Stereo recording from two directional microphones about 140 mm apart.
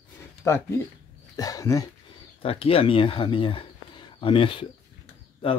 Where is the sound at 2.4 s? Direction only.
45° left (ahead or behind).